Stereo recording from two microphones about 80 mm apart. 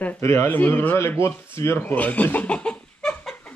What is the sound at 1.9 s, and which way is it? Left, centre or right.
Speech, left.